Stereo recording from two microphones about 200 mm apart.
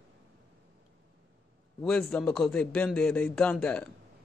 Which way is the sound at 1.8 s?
5° left (ahead or behind).